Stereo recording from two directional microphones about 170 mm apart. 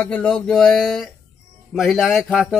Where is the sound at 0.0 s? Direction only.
5° left (ahead or behind).